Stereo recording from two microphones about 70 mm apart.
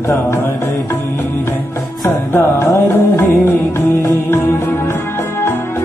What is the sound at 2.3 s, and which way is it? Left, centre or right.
Music, left.